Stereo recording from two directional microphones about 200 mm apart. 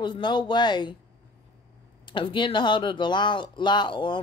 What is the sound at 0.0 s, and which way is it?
Speech, 25° left (ahead or behind).